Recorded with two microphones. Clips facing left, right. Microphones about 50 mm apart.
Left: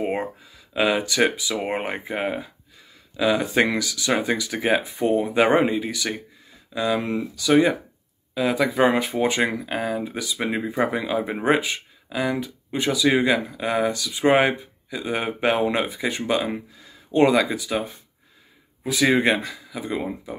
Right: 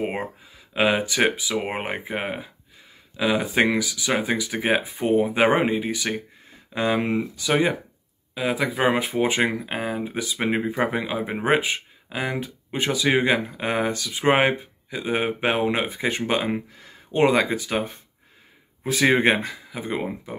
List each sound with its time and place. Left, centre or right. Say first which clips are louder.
0.0 s speech: left 2 dB; right
6.1 s speech: right 5 dB; right; by 9.0 s centre
9.0 s speech: even; right
11.1 s speech: left 2 dB; centre
11.4 s speech: right 1 dB; right
15.9 s speech: even; right